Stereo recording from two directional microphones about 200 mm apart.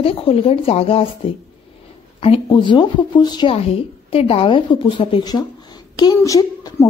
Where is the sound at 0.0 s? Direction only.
25° left (ahead or behind).